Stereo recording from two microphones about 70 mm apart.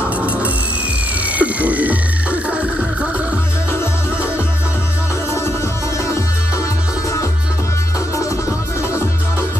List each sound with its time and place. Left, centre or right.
1.3 s music: right